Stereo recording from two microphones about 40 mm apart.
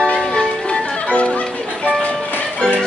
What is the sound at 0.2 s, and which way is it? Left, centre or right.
Music, centre.